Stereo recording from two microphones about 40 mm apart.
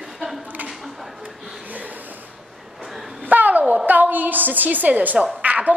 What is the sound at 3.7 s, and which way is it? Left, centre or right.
A woman's voice, right.